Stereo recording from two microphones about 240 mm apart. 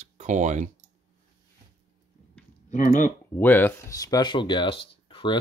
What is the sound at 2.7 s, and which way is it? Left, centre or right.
Speech, left.